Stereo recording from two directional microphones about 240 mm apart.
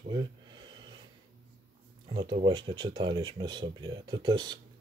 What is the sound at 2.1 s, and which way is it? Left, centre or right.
Speech, centre.